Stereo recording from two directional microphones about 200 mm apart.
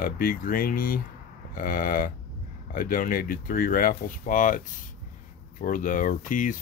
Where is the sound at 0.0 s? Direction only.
45° left (ahead or behind).